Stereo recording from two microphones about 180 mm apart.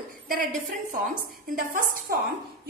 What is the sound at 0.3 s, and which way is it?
A woman's voice, 50° right (ahead or behind).